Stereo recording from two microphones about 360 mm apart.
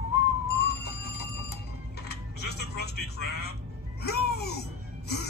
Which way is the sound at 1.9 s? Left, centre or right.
Left.